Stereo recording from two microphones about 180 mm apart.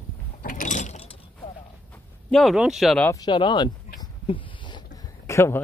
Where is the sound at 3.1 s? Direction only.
25° left (ahead or behind).